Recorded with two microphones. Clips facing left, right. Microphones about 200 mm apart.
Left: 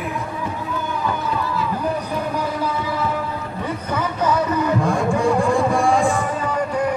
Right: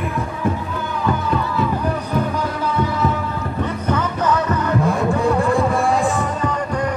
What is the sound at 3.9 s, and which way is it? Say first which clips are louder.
Music: right 1 dB; 10° left (ahead or behind).